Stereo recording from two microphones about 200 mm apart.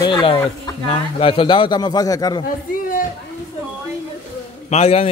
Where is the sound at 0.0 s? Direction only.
25° left (ahead or behind).